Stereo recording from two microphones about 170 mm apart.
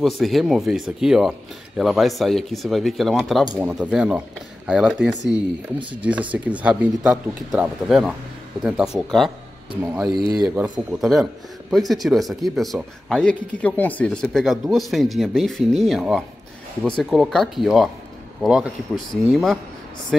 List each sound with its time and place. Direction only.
0.0 s speech: centre (ahead or behind)
10.1 s speech: 25° right (ahead or behind)
10.5 s speech: 5° right (ahead or behind)